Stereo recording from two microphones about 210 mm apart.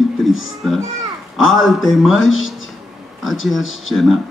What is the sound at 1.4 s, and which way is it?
Speech, centre (ahead or behind).